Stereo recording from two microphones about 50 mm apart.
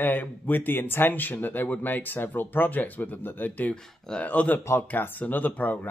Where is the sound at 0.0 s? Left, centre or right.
Left.